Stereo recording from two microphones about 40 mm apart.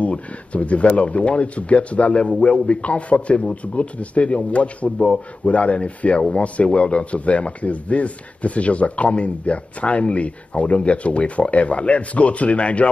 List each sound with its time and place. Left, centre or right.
0.0 s speech: left